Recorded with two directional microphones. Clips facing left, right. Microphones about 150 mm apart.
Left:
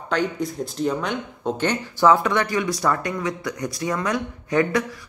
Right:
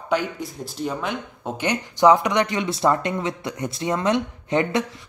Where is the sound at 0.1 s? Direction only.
5° right (ahead or behind).